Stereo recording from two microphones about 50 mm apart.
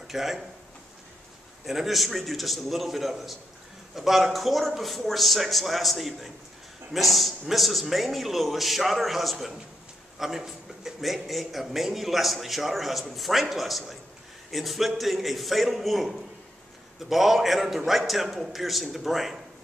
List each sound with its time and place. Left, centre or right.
0.1 s a man's voice: centre
1.7 s a man's voice: centre